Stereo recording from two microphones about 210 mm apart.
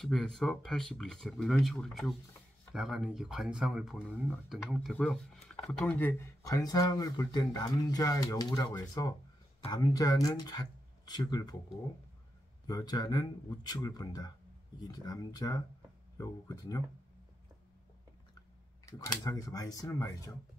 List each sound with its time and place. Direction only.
0.0 s speech: centre (ahead or behind); by 11.5 s 20° left (ahead or behind)
12.6 s speech: 20° left (ahead or behind)
18.9 s speech: 15° left (ahead or behind)